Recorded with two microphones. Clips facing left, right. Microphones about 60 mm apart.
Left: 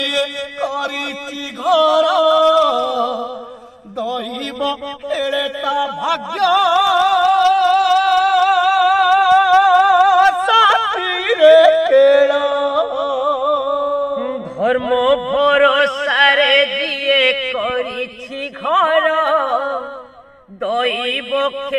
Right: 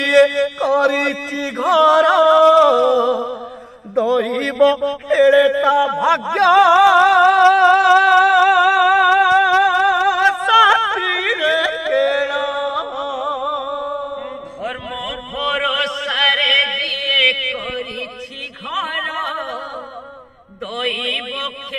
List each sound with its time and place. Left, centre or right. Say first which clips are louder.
0.0 s music: right 8 dB; right
3.9 s a man's voice: right 6 dB; right
5.9 s music: right 4 dB; right
6.4 s music: right 3 dB; right
7.8 s singing: right 2 dB; centre
10.4 s yodeling: even; centre
14.1 s music: left 7 dB; left
15.3 s chant: left 5 dB; left
18.7 s a sound: left 9 dB; left
19.4 s music: left 9 dB; left
20.6 s a sound: left 5 dB; left